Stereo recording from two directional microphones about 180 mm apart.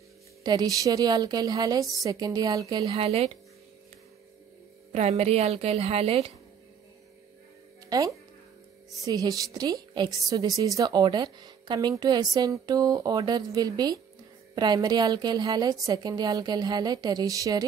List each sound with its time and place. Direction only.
0.4 s a woman's voice: 20° right (ahead or behind)
2.9 s a woman's voice: 35° right (ahead or behind)
4.9 s a woman's voice: 35° right (ahead or behind)
7.9 s a woman's voice: 20° right (ahead or behind)